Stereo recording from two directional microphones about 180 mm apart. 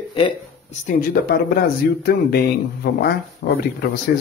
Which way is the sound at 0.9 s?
50° left (ahead or behind).